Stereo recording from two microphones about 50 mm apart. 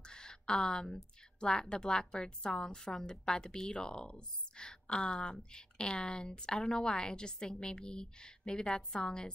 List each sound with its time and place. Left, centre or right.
0.0 s a woman's voice: centre